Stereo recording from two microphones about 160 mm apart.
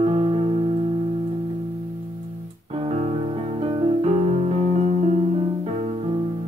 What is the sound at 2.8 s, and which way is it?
Music, 40° right (ahead or behind).